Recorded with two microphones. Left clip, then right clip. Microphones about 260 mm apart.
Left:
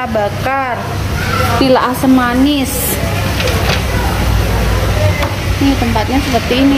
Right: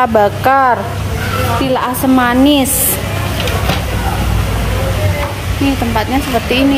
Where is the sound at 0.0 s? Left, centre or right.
Centre.